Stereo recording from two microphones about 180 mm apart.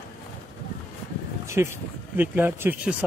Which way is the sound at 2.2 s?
10° right (ahead or behind).